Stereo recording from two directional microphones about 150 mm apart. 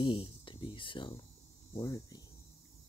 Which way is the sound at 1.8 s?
20° left (ahead or behind).